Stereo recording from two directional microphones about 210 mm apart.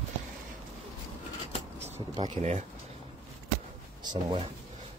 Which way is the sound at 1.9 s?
20° right (ahead or behind).